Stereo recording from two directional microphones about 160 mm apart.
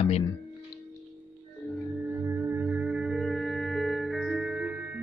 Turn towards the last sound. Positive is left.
turn(degrees=-10)  # may be behind; listen again after turning